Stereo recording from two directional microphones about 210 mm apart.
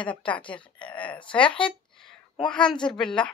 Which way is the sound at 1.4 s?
25° left (ahead or behind).